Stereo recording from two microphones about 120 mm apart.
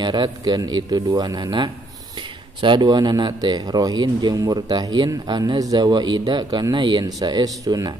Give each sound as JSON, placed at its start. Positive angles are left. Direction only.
{"t": 0.0, "sound": "a man's voice", "side_deg": -40}